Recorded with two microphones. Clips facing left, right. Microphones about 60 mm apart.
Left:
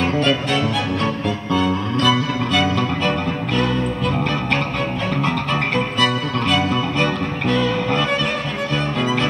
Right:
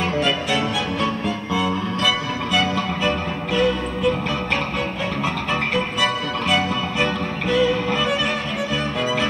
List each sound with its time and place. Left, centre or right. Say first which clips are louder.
1.5 s music: left 4 dB; centre
5.2 s music: left 1 dB; centre